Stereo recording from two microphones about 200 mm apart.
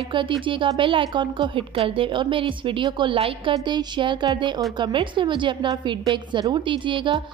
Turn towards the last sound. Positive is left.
turn(degrees=-25)  # may be behind; listen again after turning